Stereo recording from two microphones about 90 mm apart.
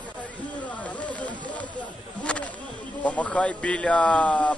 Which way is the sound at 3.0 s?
15° left (ahead or behind).